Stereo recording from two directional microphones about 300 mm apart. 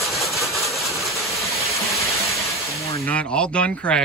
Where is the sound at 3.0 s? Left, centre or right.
Centre.